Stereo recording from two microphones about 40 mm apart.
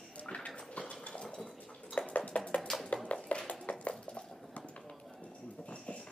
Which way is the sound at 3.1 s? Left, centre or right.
Left.